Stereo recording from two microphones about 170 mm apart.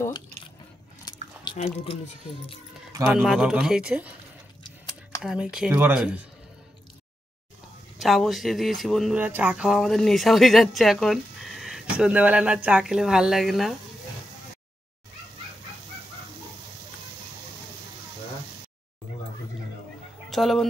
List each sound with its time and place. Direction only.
0.0 s drip: 25° left (ahead or behind)
1.0 s chewing: 25° left (ahead or behind)
3.1 s speech: centre (ahead or behind)
5.2 s speech: 5° right (ahead or behind)
8.0 s speech: centre (ahead or behind)
20.2 s speech: centre (ahead or behind)